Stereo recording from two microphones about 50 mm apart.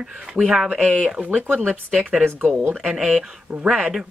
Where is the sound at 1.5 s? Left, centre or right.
Right.